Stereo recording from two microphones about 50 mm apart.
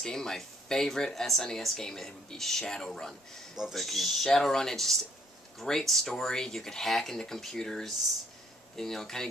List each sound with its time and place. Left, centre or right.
0.0 s speech: centre